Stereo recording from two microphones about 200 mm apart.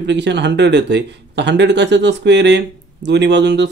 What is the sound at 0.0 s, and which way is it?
Speech, 60° right (ahead or behind).